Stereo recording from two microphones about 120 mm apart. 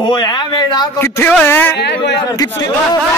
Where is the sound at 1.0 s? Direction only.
20° left (ahead or behind).